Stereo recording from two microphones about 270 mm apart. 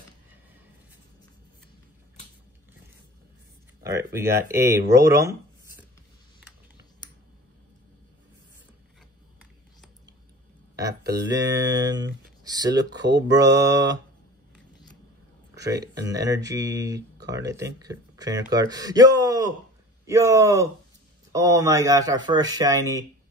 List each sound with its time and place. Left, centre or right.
3.8 s speech: centre
11.3 s speech: centre
13.0 s speech: right
15.7 s speech: centre